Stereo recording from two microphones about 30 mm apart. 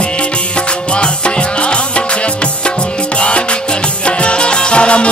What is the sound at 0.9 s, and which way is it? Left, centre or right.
Music, left.